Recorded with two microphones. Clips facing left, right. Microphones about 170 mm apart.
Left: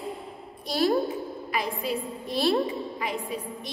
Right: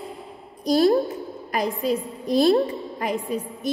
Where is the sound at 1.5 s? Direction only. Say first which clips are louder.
Right 6 dB; 40° right (ahead or behind).